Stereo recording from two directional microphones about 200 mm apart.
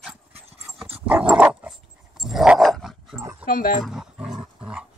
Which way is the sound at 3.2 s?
15° right (ahead or behind).